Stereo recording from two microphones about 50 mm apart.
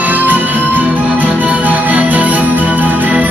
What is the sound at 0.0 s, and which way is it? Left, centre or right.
Music, right.